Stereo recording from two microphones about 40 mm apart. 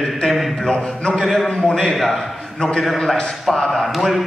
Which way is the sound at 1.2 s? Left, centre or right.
Centre.